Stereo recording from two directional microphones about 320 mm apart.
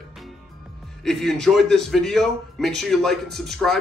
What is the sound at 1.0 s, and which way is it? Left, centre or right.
Speech, centre.